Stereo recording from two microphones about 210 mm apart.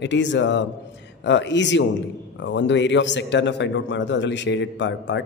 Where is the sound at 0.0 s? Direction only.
55° left (ahead or behind).